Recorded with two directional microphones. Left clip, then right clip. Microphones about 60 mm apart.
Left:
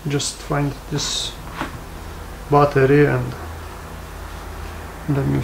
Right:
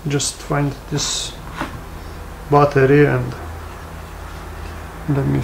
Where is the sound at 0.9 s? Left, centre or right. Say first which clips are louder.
Right 1 dB; right.